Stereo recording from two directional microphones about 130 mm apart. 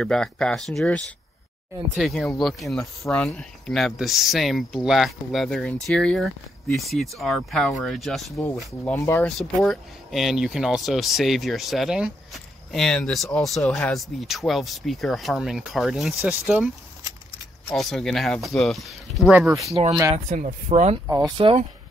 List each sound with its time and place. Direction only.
0.0 s speech: 5° left (ahead or behind)
8.9 s speech: 20° left (ahead or behind)
9.4 s speech: 5° left (ahead or behind)
19.9 s speech: 25° right (ahead or behind)
20.2 s speech: 75° right (ahead or behind)
21.4 s speech: 40° right (ahead or behind)